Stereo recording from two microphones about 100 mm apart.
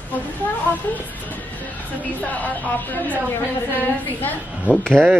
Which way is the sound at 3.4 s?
20° left (ahead or behind).